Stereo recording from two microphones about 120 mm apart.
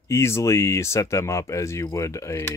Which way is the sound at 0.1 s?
20° left (ahead or behind).